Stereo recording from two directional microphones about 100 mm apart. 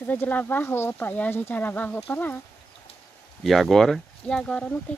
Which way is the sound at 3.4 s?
Centre (ahead or behind).